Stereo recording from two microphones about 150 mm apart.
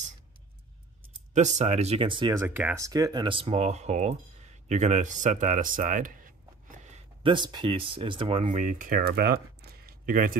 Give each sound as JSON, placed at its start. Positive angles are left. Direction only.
{"t": 1.3, "sound": "speech", "side_deg": -55}
{"t": 2.4, "sound": "speech", "side_deg": -15}
{"t": 7.2, "sound": "speech", "side_deg": -30}
{"t": 8.5, "sound": "speech", "side_deg": -60}